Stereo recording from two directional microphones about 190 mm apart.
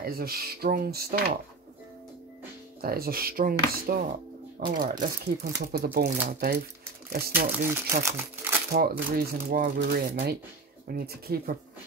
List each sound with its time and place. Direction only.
0.0 s speech: 50° right (ahead or behind)
2.8 s speech: 50° right (ahead or behind)
8.0 s speech: 15° right (ahead or behind)
8.7 s speech: 50° right (ahead or behind)